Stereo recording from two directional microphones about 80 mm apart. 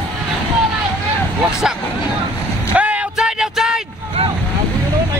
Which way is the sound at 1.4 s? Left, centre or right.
Centre.